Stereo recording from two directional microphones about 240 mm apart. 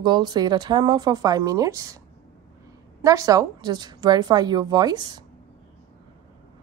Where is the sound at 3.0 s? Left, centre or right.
Centre.